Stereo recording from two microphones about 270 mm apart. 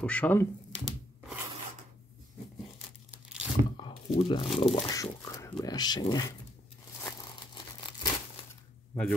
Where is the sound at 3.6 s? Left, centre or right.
Right.